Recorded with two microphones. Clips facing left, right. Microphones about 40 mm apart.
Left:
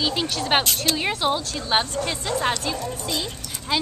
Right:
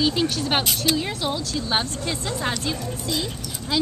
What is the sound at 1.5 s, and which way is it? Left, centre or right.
Speech, left.